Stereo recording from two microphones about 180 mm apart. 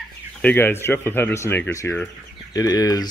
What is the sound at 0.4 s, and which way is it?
Speech, 10° left (ahead or behind).